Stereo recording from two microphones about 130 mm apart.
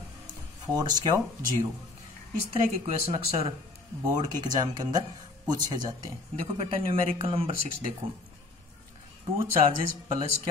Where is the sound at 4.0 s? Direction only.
30° right (ahead or behind).